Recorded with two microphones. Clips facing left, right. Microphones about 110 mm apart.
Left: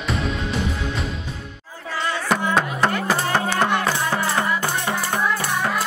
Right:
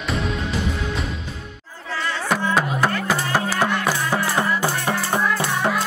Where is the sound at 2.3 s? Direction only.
5° right (ahead or behind).